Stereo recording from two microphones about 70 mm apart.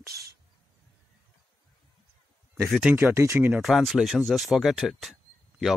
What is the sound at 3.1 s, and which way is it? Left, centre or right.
Speech, right.